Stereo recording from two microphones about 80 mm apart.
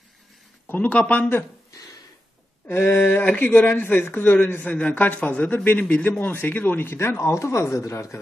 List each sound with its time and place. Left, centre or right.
0.7 s a man's voice: centre
2.8 s a man's voice: left